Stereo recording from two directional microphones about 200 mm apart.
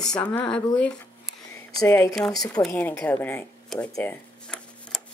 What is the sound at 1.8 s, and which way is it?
A woman's voice, 15° left (ahead or behind).